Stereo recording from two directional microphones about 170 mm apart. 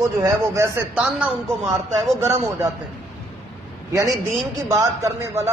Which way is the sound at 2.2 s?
15° right (ahead or behind).